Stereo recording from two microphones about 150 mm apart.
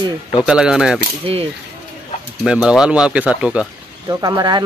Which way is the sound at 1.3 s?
40° right (ahead or behind).